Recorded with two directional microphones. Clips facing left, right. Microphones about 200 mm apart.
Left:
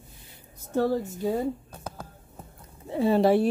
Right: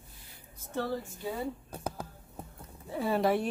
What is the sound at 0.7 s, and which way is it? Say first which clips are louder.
Speech: left 9 dB; 45° left (ahead or behind).